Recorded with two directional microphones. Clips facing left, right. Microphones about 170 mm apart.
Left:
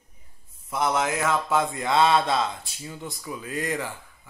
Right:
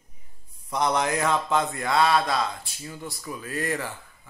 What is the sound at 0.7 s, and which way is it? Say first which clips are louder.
Speech: even; 5° left (ahead or behind).